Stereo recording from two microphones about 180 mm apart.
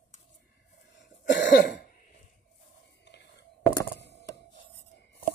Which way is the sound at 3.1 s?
70° left (ahead or behind).